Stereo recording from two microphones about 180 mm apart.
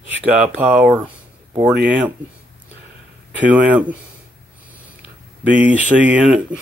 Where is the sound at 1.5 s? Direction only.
25° right (ahead or behind).